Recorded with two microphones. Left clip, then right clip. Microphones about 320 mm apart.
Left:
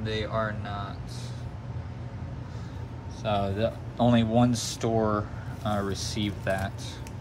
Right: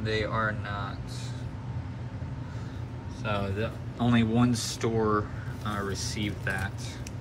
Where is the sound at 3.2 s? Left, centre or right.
Centre.